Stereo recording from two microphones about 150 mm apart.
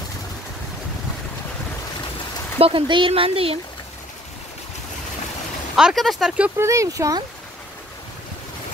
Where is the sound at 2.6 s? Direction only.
35° right (ahead or behind).